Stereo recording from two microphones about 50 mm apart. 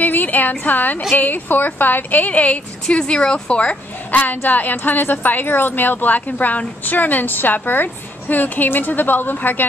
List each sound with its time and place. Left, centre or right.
0.0 s a sound: left
1.1 s a woman's voice: left
4.1 s a woman's voice: left